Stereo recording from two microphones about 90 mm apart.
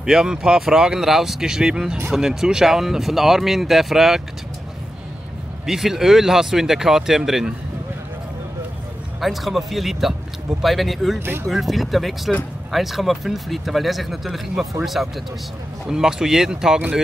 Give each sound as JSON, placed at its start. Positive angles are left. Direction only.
{"t": 0.0, "sound": "speech", "side_deg": -5}
{"t": 5.7, "sound": "speech", "side_deg": -5}
{"t": 9.2, "sound": "speech", "side_deg": 0}